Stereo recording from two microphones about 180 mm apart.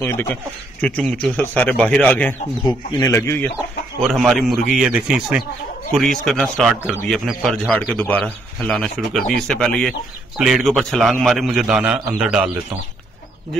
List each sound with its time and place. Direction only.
0.1 s speech: 10° left (ahead or behind)
2.6 s speech: 25° left (ahead or behind)
3.5 s speech: 5° right (ahead or behind)